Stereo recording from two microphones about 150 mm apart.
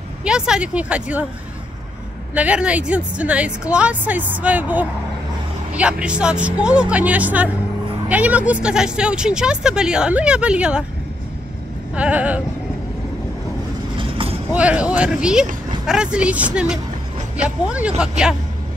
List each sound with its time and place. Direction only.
0.2 s speech: 5° right (ahead or behind)
2.3 s speech: 10° right (ahead or behind)
11.9 s speech: 10° right (ahead or behind)
13.9 s train: 35° right (ahead or behind)
14.5 s speech: 10° right (ahead or behind)